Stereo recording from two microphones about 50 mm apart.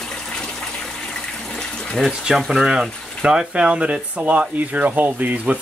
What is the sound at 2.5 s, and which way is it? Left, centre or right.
Speech, centre.